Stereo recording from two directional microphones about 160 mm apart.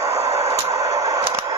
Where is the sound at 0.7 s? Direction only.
20° right (ahead or behind).